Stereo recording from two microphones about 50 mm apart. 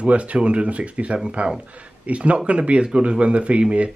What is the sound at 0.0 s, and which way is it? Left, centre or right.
A man's voice, right.